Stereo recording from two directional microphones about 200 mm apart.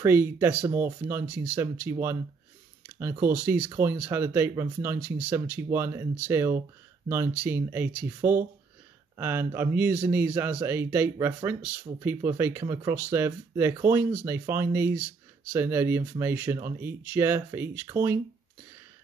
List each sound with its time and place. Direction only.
0.0 s a man's voice: 10° right (ahead or behind)